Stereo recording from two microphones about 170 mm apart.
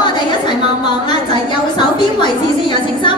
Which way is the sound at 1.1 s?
25° left (ahead or behind).